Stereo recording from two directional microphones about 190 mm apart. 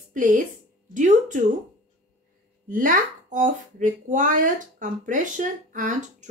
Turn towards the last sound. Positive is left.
turn(degrees=-40)  # may be behind; listen again after turning